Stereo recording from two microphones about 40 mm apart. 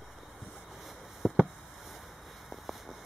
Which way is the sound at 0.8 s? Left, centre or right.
Centre.